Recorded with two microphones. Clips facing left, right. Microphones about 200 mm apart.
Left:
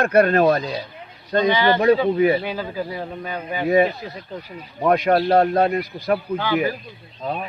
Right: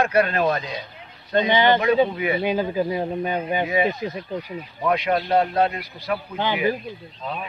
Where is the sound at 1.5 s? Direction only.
20° right (ahead or behind).